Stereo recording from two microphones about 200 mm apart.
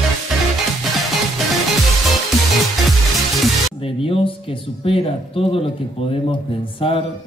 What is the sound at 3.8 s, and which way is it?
Speech, 25° left (ahead or behind).